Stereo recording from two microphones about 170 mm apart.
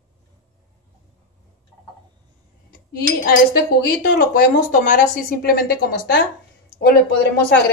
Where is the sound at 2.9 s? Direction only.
60° left (ahead or behind).